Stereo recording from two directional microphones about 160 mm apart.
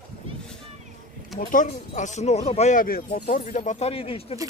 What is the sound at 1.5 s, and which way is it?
Speech, 50° left (ahead or behind).